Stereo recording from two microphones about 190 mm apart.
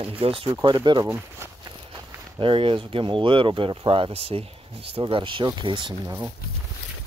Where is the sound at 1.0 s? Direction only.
10° right (ahead or behind).